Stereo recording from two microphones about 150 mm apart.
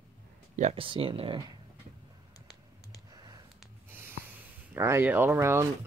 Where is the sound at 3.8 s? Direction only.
15° right (ahead or behind).